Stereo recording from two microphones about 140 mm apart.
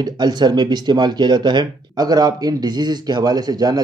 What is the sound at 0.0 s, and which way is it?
Speech, 30° right (ahead or behind).